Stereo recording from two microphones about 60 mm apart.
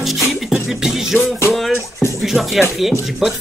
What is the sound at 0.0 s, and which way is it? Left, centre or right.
Music, centre.